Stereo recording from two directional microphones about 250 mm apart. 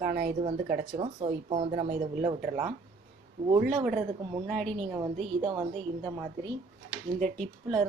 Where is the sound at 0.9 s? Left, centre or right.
Right.